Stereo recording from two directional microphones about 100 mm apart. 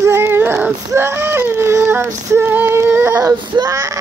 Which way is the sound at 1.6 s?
25° right (ahead or behind).